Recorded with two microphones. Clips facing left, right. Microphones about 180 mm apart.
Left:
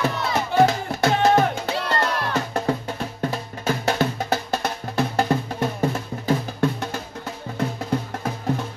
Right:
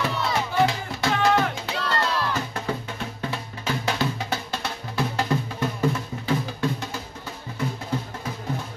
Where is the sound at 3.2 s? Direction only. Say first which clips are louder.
Left 5 dB; 45° left (ahead or behind).